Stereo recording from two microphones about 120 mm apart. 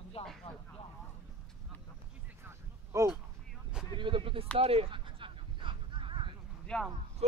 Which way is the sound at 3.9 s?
45° right (ahead or behind).